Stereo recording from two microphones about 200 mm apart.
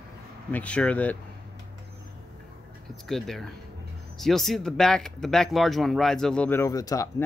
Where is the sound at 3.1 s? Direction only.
Centre (ahead or behind); by 7.1 s 15° left (ahead or behind).